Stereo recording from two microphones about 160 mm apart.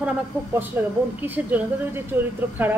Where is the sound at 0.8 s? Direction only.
15° right (ahead or behind).